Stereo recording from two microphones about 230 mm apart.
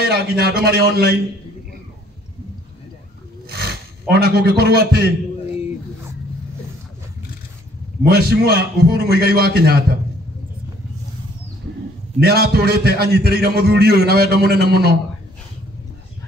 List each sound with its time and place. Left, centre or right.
0.0 s a man's voice: right
3.4 s roaring cats: right
4.1 s a man's voice: right
8.0 s a man's voice: right
12.2 s a man's voice: right